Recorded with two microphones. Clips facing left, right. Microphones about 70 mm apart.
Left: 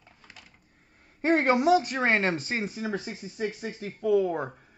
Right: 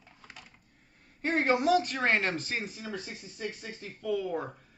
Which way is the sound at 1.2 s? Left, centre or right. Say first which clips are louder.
Left 6 dB; left.